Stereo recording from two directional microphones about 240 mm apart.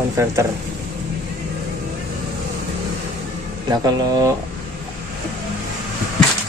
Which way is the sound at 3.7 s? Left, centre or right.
Centre.